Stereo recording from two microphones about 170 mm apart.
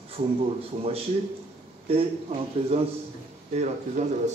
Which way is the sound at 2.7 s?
35° right (ahead or behind).